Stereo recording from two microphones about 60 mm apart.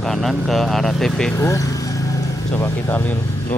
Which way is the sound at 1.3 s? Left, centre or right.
Left.